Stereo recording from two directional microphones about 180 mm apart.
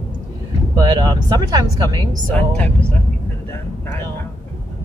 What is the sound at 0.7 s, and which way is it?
Speech, 25° right (ahead or behind).